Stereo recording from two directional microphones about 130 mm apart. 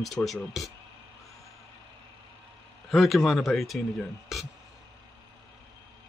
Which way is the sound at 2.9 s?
Centre (ahead or behind).